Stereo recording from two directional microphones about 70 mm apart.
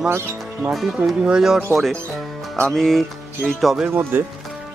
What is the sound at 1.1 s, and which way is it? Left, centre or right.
Speech, centre.